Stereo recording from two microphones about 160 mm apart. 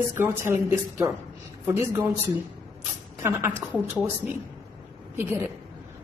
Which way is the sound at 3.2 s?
15° right (ahead or behind).